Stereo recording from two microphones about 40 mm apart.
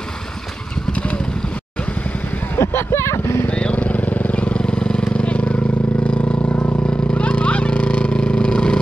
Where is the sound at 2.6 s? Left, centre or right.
Left.